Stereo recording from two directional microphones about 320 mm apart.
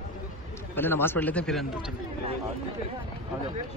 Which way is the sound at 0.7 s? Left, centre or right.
Centre.